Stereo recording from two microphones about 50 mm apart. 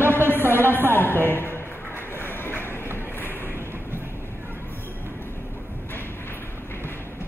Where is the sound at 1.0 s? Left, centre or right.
Left.